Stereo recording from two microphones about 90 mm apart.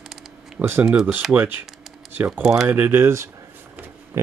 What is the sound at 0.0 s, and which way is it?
Camera, 5° right (ahead or behind).